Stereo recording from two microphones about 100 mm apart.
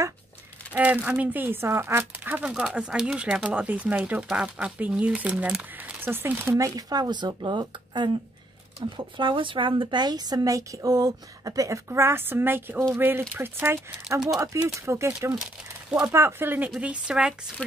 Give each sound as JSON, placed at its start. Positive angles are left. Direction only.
{"t": 1.0, "sound": "speech", "side_deg": -15}
{"t": 2.4, "sound": "speech", "side_deg": -10}
{"t": 3.4, "sound": "speech", "side_deg": -15}
{"t": 6.9, "sound": "a woman's voice", "side_deg": -45}
{"t": 15.4, "sound": "speech", "side_deg": -10}
{"t": 16.1, "sound": "speech", "side_deg": -25}